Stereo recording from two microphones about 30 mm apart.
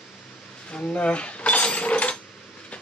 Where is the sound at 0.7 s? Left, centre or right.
Left.